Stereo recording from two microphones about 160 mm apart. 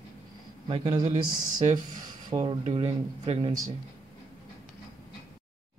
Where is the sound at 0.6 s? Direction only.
35° right (ahead or behind).